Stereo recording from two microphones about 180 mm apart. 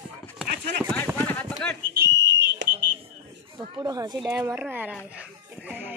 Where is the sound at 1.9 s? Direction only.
70° right (ahead or behind); by 2.6 s 90° right.